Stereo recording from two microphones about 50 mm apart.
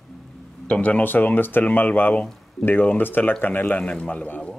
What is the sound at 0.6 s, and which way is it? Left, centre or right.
Speech, left.